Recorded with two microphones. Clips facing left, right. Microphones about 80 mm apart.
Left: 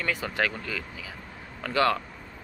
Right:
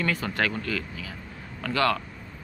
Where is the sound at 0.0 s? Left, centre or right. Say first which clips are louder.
Right 1 dB; centre.